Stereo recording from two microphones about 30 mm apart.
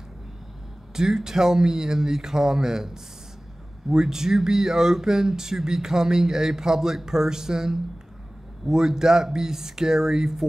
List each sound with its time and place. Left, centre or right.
0.9 s speech: centre